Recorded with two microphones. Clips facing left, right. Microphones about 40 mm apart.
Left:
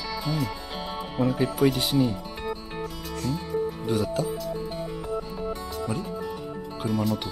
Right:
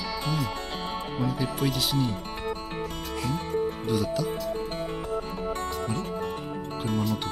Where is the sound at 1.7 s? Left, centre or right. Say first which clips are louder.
Left 2 dB; centre.